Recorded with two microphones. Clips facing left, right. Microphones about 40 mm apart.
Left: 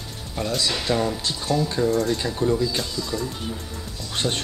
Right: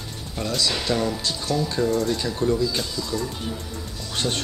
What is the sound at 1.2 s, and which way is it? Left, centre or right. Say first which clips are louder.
Speech: left 1 dB; left.